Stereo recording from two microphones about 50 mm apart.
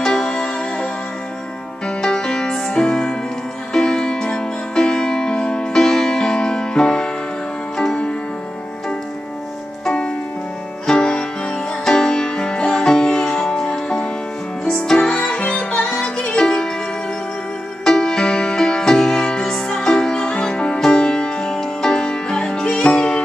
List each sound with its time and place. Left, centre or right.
0.0 s music: centre
1.9 s music: centre
9.8 s music: centre
15.9 s music: centre
17.8 s music: centre